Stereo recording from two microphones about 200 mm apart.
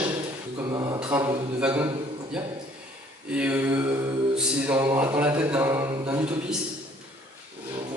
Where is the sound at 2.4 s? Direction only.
5° right (ahead or behind).